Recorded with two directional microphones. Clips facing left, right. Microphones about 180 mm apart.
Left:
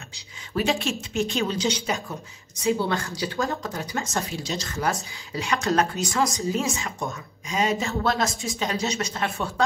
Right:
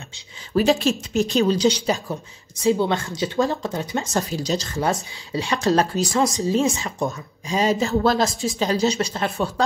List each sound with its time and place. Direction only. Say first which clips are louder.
0.6 s a woman's voice: right 6 dB; 35° right (ahead or behind)
2.7 s a woman's voice: right 3 dB; 20° right (ahead or behind); by 4.6 s 40° right (ahead or behind)
4.6 s a woman's voice: right 4 dB; 25° right (ahead or behind)
8.3 s speech: right 5 dB; centre (ahead or behind)
8.5 s a woman's voice: right 7 dB; 35° right (ahead or behind)